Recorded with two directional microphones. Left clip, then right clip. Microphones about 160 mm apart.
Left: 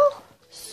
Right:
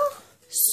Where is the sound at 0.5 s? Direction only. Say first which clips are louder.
Right 13 dB; 40° right (ahead or behind).